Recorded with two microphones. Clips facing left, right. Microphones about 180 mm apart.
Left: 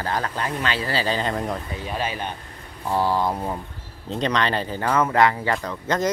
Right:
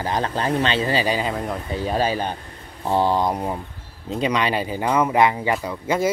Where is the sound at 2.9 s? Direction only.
20° right (ahead or behind).